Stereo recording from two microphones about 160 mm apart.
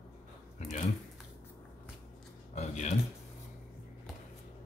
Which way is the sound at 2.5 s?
45° left (ahead or behind).